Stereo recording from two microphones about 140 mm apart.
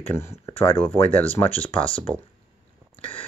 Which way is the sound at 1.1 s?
10° left (ahead or behind).